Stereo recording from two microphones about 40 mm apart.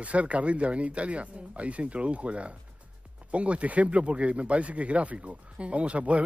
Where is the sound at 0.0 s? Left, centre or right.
Right.